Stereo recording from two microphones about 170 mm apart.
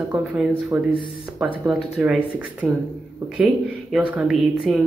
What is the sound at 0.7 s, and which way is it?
Speech, 15° right (ahead or behind).